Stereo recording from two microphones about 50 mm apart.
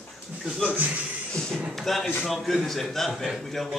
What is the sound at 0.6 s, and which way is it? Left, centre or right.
Speech, right.